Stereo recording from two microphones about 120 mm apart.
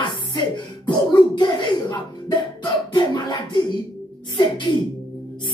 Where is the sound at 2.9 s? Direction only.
40° left (ahead or behind).